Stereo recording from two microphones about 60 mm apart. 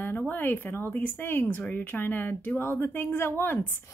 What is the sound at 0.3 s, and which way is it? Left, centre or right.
A woman's voice, left.